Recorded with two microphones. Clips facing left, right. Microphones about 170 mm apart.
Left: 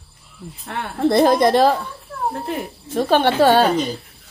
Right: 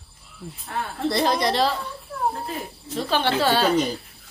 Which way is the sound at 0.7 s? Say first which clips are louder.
Left 7 dB; 60° left (ahead or behind).